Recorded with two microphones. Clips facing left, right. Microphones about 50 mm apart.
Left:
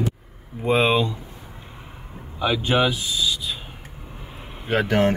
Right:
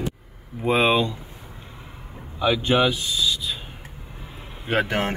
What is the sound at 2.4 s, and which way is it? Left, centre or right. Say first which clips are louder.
Speech: right 1 dB; centre.